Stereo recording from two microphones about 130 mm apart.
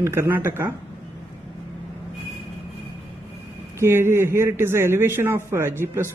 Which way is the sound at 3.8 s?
20° right (ahead or behind).